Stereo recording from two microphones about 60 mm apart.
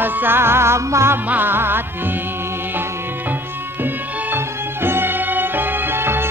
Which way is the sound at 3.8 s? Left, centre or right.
Right.